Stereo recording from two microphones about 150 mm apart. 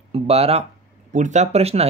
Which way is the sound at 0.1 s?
45° right (ahead or behind).